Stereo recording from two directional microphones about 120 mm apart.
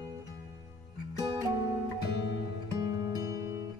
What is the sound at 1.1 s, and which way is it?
Music, 30° right (ahead or behind).